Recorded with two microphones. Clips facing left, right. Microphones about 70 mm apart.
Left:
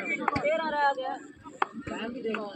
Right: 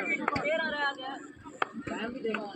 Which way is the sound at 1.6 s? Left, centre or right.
Centre.